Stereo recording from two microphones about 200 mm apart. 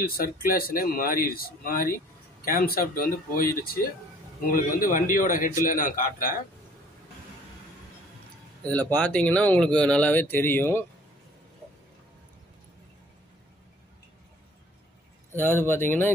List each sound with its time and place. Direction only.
0.2 s speech: 45° left (ahead or behind)
8.6 s speech: 5° left (ahead or behind)
15.3 s speech: 10° left (ahead or behind)